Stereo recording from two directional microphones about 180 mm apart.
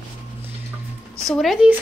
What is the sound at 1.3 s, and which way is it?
Speech, centre (ahead or behind).